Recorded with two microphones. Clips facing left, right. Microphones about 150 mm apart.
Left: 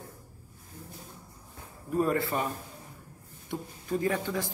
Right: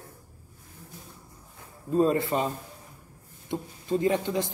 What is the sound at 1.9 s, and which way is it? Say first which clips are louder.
Speech: right 4 dB; 20° right (ahead or behind).